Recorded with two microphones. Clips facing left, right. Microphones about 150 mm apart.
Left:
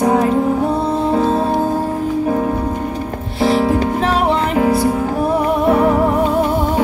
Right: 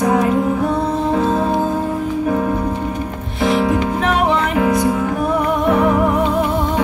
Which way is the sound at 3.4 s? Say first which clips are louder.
Left 2 dB; 35° left (ahead or behind).